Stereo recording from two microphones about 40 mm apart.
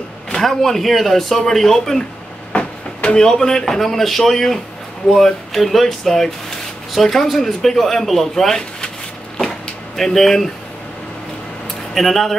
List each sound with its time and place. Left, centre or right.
0.3 s speech: centre
2.5 s a sound: left
3.3 s speech: centre
9.9 s speech: centre
11.9 s speech: centre